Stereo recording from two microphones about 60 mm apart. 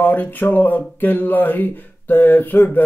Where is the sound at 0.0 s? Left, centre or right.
Left.